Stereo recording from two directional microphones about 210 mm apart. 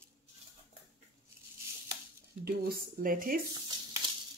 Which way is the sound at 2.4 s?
45° right (ahead or behind).